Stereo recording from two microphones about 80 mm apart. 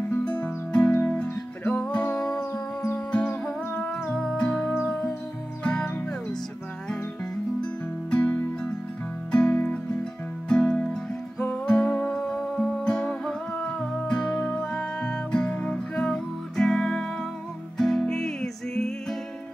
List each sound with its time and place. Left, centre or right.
0.2 s music: centre
2.5 s music: left
8.1 s music: centre